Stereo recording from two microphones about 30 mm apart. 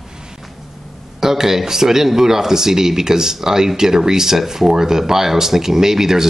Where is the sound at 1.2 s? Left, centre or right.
Centre.